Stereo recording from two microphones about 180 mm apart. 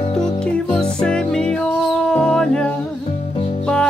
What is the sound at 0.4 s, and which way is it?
Music, 5° left (ahead or behind).